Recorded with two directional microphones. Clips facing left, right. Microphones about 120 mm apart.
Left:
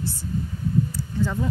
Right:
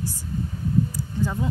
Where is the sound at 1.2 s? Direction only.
15° right (ahead or behind).